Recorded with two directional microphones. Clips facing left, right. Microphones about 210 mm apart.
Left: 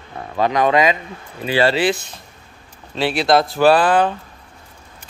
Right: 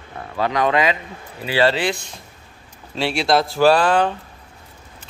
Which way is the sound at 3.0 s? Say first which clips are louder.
Left 2 dB; centre (ahead or behind).